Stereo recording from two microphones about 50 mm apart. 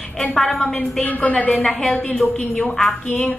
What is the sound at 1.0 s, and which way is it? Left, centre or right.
Speech, left.